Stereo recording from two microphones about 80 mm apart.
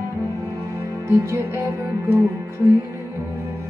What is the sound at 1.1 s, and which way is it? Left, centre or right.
Music, right.